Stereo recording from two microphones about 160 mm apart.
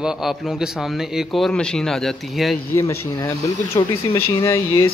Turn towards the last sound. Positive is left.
turn(degrees=15)  # may be behind; listen again after turning